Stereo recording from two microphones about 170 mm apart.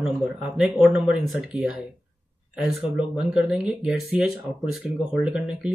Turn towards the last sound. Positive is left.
turn(degrees=-5)  # may be behind; listen again after turning